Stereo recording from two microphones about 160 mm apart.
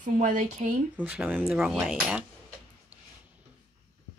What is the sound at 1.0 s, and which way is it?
Speech, 10° right (ahead or behind).